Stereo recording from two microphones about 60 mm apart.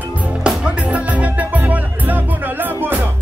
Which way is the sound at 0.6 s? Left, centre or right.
Right.